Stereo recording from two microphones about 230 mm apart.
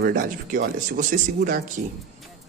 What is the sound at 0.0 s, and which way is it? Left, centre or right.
Speech, right.